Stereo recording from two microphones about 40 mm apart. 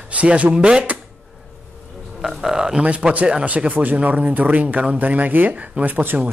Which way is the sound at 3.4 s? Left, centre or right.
Right.